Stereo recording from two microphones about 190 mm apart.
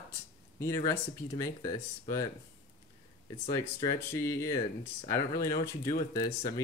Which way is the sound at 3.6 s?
20° left (ahead or behind).